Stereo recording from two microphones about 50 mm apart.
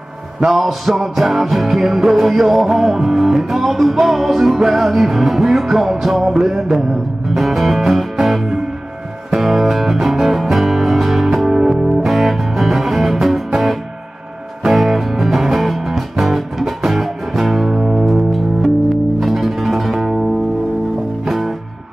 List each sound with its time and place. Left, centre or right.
0.4 s music: centre
21.3 s music: centre